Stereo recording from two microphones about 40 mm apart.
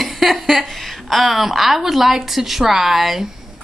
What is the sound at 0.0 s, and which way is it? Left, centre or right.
A woman's voice, centre.